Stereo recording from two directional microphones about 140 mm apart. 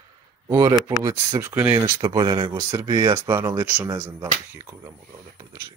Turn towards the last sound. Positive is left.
turn(degrees=-20)  # may be behind; listen again after turning